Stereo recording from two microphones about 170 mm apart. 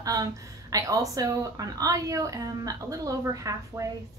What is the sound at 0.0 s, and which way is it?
A woman's voice, 20° right (ahead or behind).